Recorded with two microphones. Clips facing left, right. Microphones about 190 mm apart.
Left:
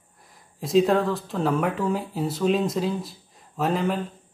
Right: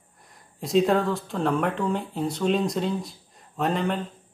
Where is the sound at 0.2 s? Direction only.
Centre (ahead or behind).